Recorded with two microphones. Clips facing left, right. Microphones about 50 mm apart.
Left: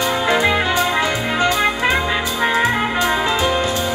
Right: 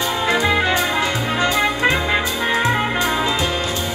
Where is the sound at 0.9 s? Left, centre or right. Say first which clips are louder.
Left 1 dB; left.